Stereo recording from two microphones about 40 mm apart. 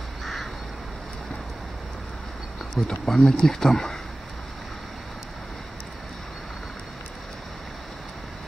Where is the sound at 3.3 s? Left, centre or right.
Centre.